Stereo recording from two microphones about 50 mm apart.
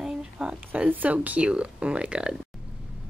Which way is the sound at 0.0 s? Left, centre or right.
Right.